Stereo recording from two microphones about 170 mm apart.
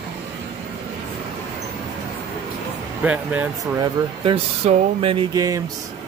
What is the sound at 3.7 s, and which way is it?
Speech, 30° right (ahead or behind).